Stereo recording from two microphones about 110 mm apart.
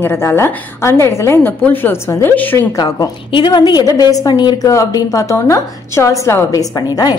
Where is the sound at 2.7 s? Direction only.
30° left (ahead or behind).